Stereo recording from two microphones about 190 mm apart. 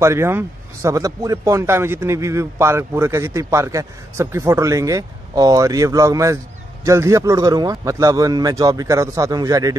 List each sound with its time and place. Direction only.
0.0 s speech: 15° right (ahead or behind)